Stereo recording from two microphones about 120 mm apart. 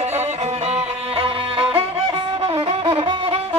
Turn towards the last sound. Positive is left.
turn(degrees=-50)  # may be behind; listen again after turning